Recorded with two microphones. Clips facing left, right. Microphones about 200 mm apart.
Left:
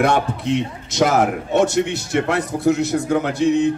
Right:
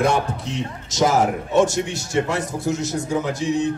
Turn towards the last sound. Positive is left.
turn(degrees=60)  # may be behind; listen again after turning